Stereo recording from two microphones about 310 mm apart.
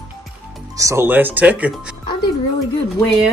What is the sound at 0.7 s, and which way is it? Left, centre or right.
Speech, centre.